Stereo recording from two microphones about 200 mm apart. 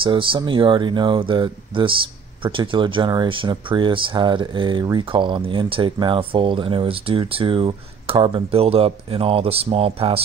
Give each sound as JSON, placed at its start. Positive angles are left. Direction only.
{"t": 0.0, "sound": "speech", "side_deg": -25}